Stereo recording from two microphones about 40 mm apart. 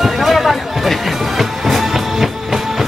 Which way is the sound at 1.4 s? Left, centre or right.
Centre.